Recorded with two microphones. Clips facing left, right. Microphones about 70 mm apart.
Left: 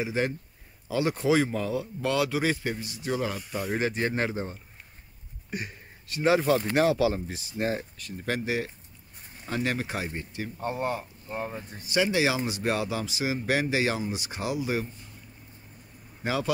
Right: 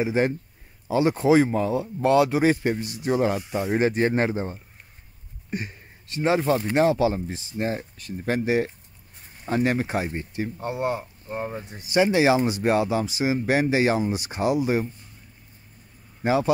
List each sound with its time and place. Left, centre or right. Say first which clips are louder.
0.0 s speech: right 6 dB; right
6.1 s speech: right 1 dB; right
8.0 s speech: right 5 dB; right
16.2 s speech: right 7 dB; right